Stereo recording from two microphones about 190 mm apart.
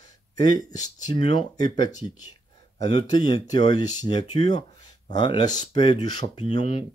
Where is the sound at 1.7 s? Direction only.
20° left (ahead or behind).